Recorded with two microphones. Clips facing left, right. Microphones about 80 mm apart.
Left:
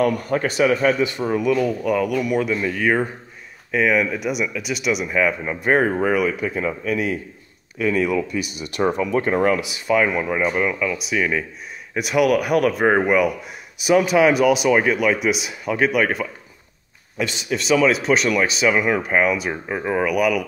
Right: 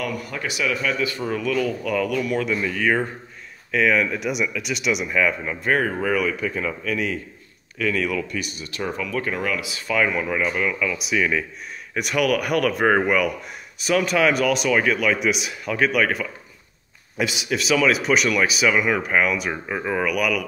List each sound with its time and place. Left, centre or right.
0.0 s a man's voice: left
0.9 s a man's voice: left
6.1 s a man's voice: centre
8.7 s speech: left
9.7 s a man's voice: centre
11.0 s a man's voice: centre
15.1 s speech: centre
17.5 s a man's voice: centre
18.7 s a man's voice: centre